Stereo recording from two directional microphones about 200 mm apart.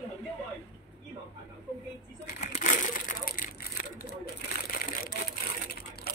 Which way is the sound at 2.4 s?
35° left (ahead or behind).